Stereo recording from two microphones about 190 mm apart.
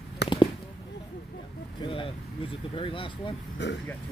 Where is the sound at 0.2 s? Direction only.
60° left (ahead or behind).